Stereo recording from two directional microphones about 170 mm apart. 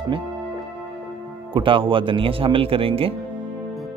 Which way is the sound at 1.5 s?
30° right (ahead or behind).